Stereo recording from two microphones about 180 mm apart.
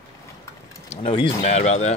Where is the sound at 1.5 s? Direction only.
40° left (ahead or behind).